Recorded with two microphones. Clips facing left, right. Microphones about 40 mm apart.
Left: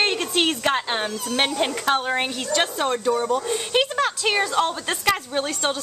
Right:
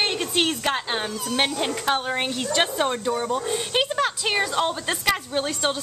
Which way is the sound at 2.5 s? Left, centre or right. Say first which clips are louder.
Left 1 dB; centre.